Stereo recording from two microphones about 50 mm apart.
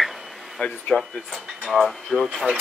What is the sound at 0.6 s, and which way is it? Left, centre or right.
Speech, centre.